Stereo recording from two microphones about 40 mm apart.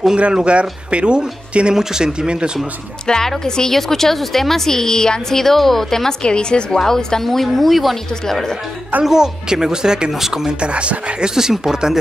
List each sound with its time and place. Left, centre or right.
0.3 s speech: right
1.8 s speech: centre
3.1 s a woman's voice: centre
6.2 s a woman's voice: left
7.2 s a woman's voice: centre
9.0 s speech: centre
10.6 s speech: right
11.2 s speech: centre